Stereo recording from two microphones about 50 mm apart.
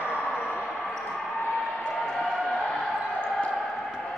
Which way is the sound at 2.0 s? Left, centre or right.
Centre.